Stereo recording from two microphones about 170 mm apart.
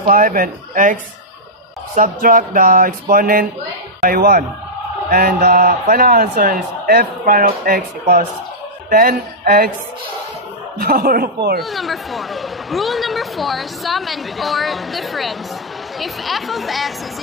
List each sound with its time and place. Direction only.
0.0 s speech: 55° right (ahead or behind)
2.0 s a man's voice: 50° right (ahead or behind)
8.9 s a man's voice: 55° right (ahead or behind)
10.8 s a man's voice: 60° right (ahead or behind)
11.6 s speech: centre (ahead or behind)